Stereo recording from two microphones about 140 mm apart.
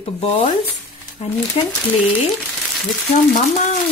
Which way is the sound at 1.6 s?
45° left (ahead or behind).